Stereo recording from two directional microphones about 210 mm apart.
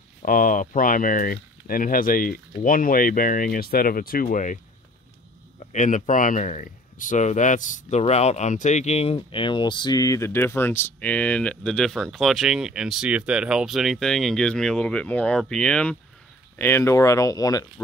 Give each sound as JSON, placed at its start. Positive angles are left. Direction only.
{"t": 0.2, "sound": "speech", "side_deg": 40}
{"t": 5.6, "sound": "speech", "side_deg": 35}